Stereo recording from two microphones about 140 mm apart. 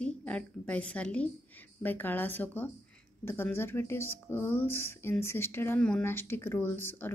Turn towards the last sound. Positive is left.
turn(degrees=15)  # may be behind; listen again after turning